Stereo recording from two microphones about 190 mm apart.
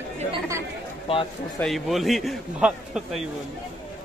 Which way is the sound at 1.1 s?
30° left (ahead or behind).